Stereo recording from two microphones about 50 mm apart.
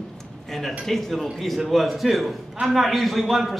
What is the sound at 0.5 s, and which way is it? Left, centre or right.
A man's voice, centre.